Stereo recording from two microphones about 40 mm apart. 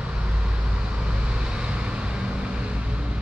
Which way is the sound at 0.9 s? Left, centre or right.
Right.